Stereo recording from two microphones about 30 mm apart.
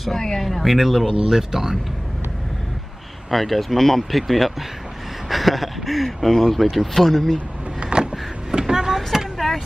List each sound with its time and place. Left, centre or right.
0.2 s speech: centre
0.5 s speech: centre
1.0 s speech: centre
3.3 s speech: centre
4.2 s speech: centre
7.8 s vehicle: right; by 9.3 s centre